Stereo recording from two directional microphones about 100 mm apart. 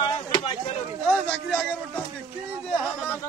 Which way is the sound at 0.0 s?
55° left (ahead or behind).